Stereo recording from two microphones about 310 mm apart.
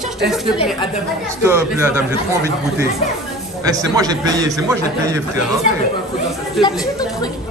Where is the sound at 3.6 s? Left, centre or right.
Centre.